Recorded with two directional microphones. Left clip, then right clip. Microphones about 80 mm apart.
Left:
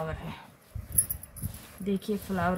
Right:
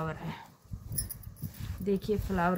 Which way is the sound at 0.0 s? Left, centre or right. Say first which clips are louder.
Left 1 dB; right.